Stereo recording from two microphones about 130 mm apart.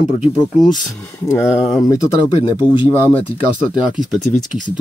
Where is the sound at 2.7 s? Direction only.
35° left (ahead or behind).